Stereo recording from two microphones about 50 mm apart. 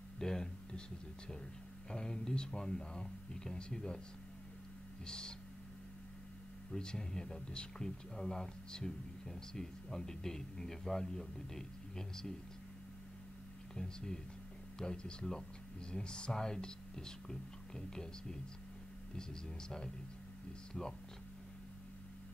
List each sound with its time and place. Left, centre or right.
0.2 s a sound: centre
1.9 s speech: centre
5.0 s speech: centre
6.7 s speech: centre
13.7 s speech: centre